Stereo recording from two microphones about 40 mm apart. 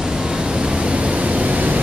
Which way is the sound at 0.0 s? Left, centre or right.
Centre.